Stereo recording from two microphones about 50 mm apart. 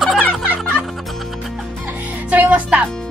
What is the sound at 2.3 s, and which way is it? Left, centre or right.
Speech, right.